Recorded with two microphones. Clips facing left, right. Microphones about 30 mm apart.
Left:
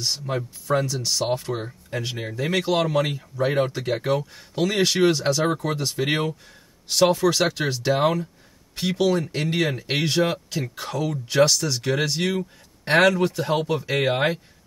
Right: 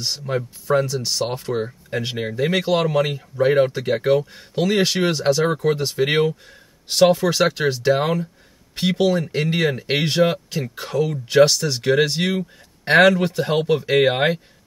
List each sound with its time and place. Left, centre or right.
0.0 s speech: centre
1.9 s speech: centre
8.7 s speech: right
9.0 s speech: centre